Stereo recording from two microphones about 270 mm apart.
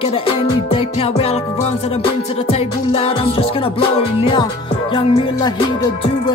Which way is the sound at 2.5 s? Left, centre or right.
Left.